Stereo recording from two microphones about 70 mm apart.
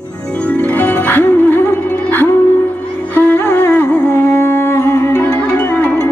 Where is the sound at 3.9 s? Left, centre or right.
Centre.